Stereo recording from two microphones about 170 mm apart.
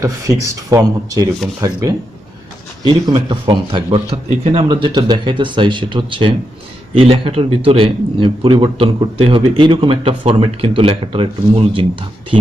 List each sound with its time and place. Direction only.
0.0 s a man's voice: 20° right (ahead or behind)